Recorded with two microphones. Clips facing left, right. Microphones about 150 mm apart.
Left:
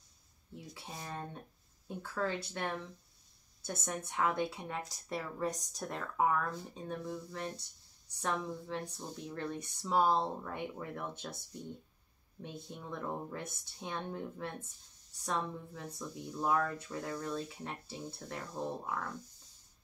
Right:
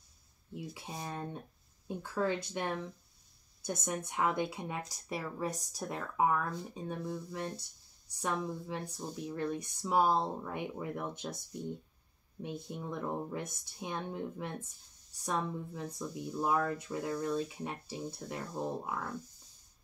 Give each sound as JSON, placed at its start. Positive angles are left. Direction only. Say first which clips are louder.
{"t": 0.7, "sound": "speech", "louder": "even", "side_deg": -15}